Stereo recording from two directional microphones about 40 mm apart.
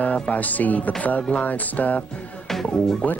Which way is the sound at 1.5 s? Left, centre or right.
Left.